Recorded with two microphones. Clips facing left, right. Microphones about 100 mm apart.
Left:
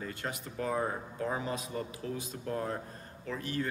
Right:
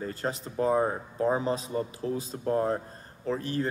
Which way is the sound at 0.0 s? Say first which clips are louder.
Right 6 dB; 35° right (ahead or behind).